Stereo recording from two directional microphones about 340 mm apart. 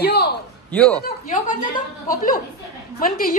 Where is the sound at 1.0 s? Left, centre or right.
Left.